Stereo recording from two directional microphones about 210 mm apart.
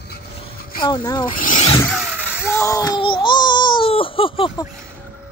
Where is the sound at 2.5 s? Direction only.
15° left (ahead or behind).